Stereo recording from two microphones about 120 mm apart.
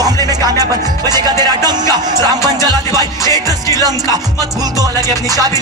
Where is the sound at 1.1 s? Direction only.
35° right (ahead or behind).